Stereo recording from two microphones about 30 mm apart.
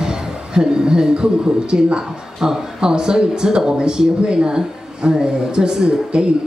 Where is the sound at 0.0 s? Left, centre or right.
Right.